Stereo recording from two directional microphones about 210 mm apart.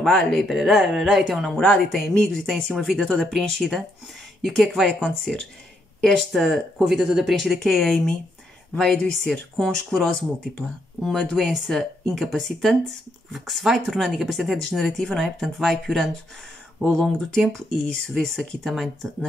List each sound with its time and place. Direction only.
0.0 s speech: centre (ahead or behind)